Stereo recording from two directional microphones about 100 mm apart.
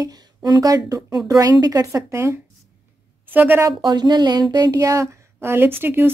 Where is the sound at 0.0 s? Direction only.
40° right (ahead or behind); by 3.6 s 20° right (ahead or behind).